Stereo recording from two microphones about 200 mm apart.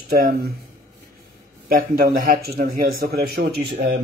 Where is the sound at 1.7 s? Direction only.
45° right (ahead or behind).